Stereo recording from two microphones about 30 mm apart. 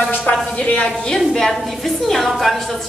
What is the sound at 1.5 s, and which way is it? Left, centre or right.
Speech, centre.